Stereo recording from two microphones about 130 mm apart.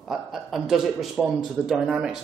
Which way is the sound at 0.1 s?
Centre (ahead or behind).